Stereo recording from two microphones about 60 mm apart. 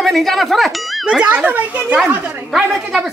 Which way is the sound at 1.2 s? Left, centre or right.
Right.